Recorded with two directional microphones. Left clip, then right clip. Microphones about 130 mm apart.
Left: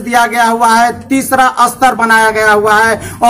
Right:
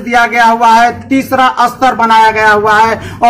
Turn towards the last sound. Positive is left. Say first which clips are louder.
# right 1 dB
turn(degrees=25)  # may be behind; listen again after turning